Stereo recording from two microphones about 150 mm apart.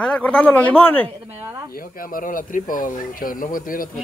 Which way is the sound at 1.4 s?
20° right (ahead or behind).